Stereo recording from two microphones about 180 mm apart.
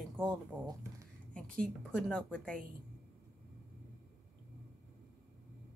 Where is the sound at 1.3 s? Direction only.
5° left (ahead or behind).